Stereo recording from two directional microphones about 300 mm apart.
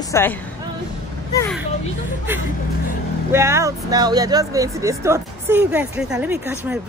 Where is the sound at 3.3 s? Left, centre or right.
Centre.